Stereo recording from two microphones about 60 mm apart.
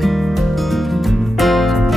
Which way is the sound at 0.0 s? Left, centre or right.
Centre.